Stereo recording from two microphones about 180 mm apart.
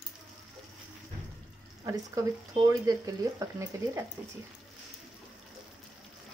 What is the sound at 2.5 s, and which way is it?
Speech, 20° right (ahead or behind).